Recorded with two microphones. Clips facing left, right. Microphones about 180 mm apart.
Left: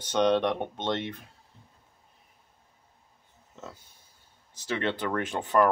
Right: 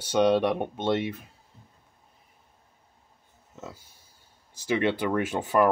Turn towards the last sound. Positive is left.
turn(degrees=-10)  # may be behind; listen again after turning